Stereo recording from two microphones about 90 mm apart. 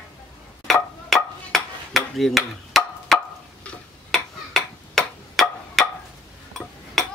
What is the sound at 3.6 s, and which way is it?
Tick-tock, 15° left (ahead or behind).